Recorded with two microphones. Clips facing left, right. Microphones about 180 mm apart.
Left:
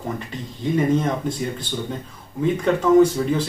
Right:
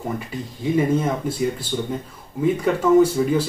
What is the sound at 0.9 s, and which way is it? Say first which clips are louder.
Speech: even; 5° right (ahead or behind).